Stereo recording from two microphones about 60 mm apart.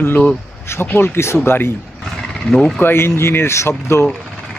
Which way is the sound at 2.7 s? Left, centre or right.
Left.